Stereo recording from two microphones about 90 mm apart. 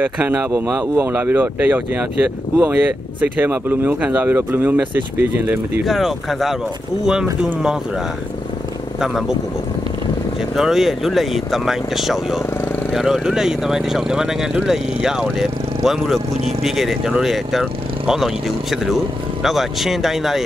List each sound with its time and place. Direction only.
0.0 s speech: 20° right (ahead or behind)
5.9 s speech: centre (ahead or behind)
10.5 s speech: 5° right (ahead or behind)